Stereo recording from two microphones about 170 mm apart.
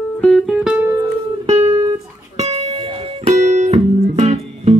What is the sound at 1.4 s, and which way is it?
Music, 35° right (ahead or behind).